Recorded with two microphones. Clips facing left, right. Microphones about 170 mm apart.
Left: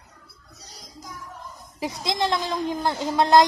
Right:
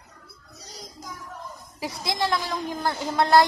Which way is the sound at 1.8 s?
20° left (ahead or behind).